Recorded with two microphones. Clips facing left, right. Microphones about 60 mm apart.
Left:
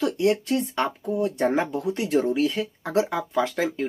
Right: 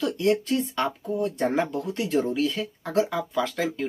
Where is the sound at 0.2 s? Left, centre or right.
Centre.